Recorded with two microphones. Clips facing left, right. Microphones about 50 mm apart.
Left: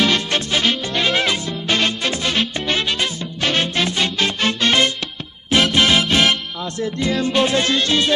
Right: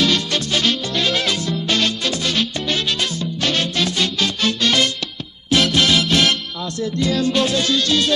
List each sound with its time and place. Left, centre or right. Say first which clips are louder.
0.0 s music: left 1 dB; left